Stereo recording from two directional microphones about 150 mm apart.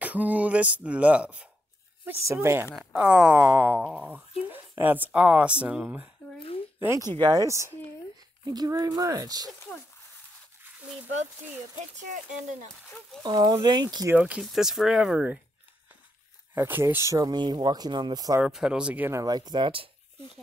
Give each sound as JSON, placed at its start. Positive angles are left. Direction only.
{"t": 0.0, "sound": "speech", "side_deg": -10}
{"t": 2.7, "sound": "speech", "side_deg": -5}
{"t": 6.8, "sound": "speech", "side_deg": -20}
{"t": 12.0, "sound": "speech", "side_deg": -55}
{"t": 13.2, "sound": "speech", "side_deg": -30}
{"t": 14.1, "sound": "speech", "side_deg": -10}
{"t": 16.5, "sound": "speech", "side_deg": -15}
{"t": 18.4, "sound": "speech", "side_deg": -5}